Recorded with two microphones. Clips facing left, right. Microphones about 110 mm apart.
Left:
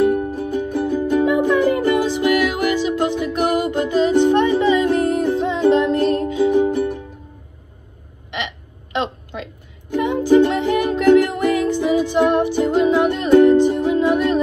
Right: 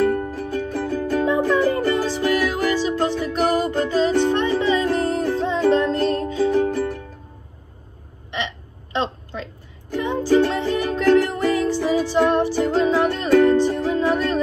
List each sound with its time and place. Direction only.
0.0 s music: 15° left (ahead or behind)
8.4 s music: 15° left (ahead or behind)